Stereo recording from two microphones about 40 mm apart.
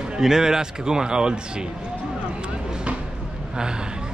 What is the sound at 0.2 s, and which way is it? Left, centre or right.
A man's voice, centre.